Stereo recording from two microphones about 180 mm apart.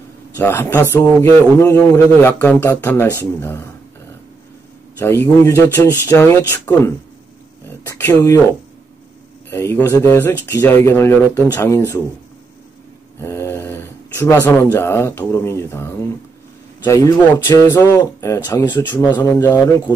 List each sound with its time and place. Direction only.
0.4 s a man's voice: 10° left (ahead or behind)
4.9 s a man's voice: 15° left (ahead or behind)
7.8 s a man's voice: 15° left (ahead or behind)
9.5 s a man's voice: 15° left (ahead or behind)
13.2 s speech: 15° left (ahead or behind)
17.5 s a man's voice: 20° left (ahead or behind)